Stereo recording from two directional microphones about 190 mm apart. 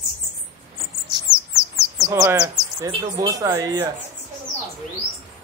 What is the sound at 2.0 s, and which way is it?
Speech, 15° right (ahead or behind).